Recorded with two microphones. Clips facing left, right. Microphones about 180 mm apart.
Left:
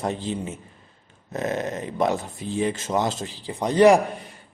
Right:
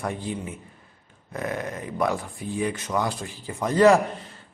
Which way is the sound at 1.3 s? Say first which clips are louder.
Left 4 dB; 25° left (ahead or behind).